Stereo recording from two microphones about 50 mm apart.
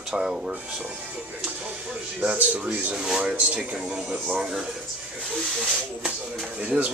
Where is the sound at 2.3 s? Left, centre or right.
Right.